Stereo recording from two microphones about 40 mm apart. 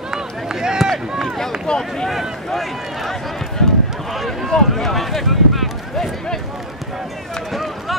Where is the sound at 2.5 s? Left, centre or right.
Centre.